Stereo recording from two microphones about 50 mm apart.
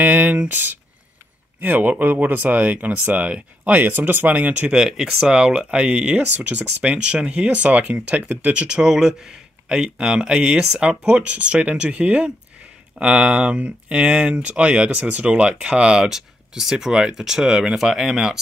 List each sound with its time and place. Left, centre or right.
0.0 s speech: right
3.9 s speech: right
4.7 s speech: centre; by 8.6 s right
8.6 s speech: centre
16.1 s speech: centre